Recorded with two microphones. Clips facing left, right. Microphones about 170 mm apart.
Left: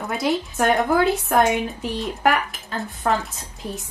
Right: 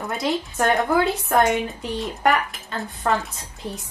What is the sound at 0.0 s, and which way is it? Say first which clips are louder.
A woman's voice: left 2 dB; centre (ahead or behind).